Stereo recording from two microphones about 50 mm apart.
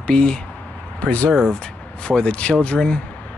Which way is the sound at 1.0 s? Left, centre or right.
Left.